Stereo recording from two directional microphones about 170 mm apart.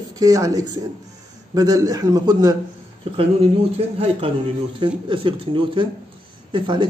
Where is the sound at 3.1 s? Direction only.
35° right (ahead or behind).